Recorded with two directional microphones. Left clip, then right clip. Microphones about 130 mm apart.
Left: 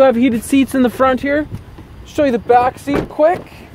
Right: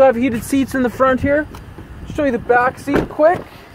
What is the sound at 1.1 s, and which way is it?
Speech, 70° left (ahead or behind).